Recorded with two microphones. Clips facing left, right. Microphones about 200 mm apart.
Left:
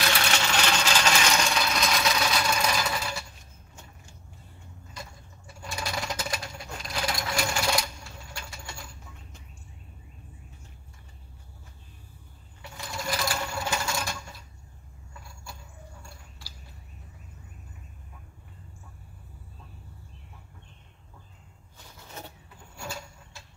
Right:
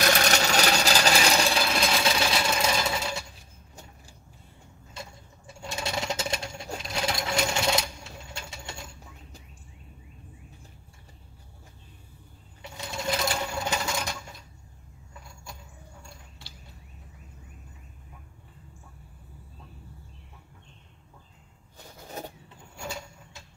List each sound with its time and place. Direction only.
0.0 s sewing machine: 40° right (ahead or behind); by 3.2 s 25° right (ahead or behind)
5.6 s sewing machine: 25° right (ahead or behind)
12.8 s sewing machine: 25° right (ahead or behind)